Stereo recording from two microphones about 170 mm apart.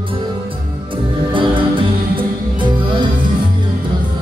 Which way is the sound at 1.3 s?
30° right (ahead or behind).